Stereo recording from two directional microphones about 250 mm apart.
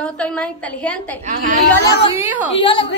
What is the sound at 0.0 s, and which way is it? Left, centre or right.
Speech, centre.